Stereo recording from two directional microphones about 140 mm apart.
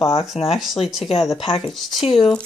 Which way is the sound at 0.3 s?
5° right (ahead or behind).